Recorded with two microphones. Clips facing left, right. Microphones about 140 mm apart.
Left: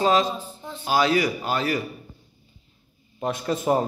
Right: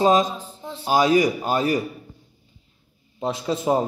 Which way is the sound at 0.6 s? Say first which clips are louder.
Right 5 dB; 30° right (ahead or behind).